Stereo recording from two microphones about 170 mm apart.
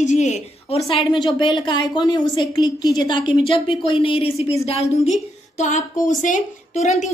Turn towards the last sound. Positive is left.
turn(degrees=45)  # may be behind; listen again after turning